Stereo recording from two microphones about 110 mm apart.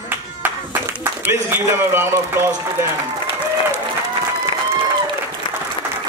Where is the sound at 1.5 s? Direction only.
20° right (ahead or behind).